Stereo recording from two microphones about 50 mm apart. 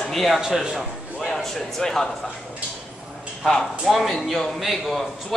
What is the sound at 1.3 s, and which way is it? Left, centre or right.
Speech, centre.